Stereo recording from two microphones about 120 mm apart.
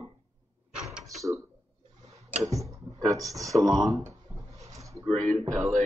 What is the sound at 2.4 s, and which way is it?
Computer keyboard, 25° right (ahead or behind).